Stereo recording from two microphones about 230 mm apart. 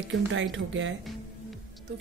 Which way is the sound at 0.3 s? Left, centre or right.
Right.